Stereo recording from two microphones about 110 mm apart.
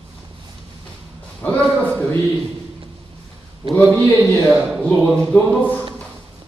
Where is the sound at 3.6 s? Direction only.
55° right (ahead or behind).